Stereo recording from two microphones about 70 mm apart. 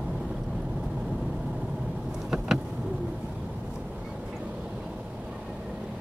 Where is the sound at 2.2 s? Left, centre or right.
Centre.